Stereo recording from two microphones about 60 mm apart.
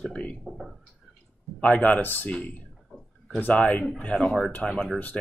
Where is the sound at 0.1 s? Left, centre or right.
Left.